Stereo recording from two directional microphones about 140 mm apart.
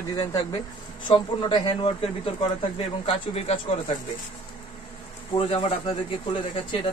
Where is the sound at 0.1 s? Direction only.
30° left (ahead or behind); by 3.5 s 45° left (ahead or behind).